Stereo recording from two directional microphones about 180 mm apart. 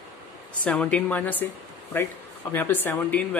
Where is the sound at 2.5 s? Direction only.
10° left (ahead or behind).